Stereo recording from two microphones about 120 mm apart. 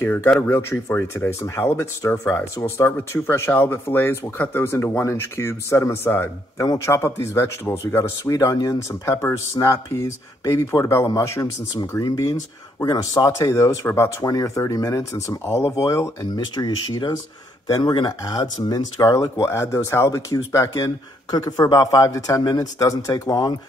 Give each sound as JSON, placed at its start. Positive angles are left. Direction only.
{"t": 0.0, "sound": "speech", "side_deg": 20}